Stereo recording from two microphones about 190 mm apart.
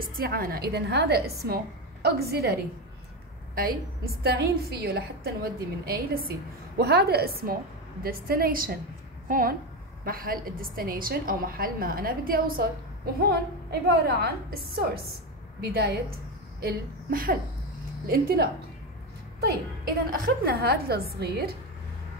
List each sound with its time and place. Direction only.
0.1 s a woman's voice: 50° right (ahead or behind)
20.4 s a woman's voice: 50° right (ahead or behind)